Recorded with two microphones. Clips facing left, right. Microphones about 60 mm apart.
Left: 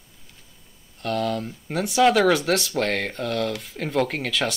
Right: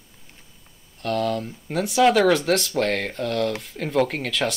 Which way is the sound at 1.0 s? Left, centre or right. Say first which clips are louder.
Right 1 dB; centre.